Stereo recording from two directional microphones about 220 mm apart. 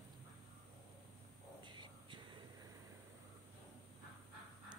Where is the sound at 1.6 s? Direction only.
20° right (ahead or behind).